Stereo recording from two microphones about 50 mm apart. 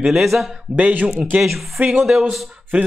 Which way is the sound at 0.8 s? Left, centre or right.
Right.